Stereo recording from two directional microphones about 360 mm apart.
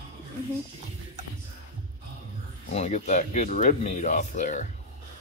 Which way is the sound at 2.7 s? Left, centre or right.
Centre.